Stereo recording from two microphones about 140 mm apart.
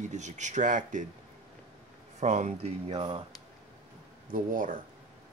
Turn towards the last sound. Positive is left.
turn(degrees=-75)  # may be behind; listen again after turning